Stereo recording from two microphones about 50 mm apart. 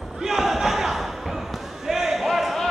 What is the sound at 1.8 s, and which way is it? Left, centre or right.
Basketball bounce, centre.